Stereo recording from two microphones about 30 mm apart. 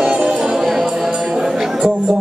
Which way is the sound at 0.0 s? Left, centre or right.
Right.